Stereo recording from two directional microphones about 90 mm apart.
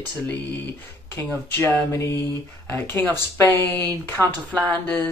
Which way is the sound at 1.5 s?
30° left (ahead or behind).